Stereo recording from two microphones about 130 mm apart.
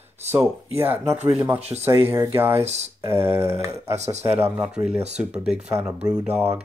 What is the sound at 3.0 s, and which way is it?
Speech, 15° right (ahead or behind).